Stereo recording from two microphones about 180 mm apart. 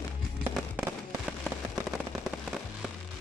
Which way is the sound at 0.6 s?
Centre (ahead or behind).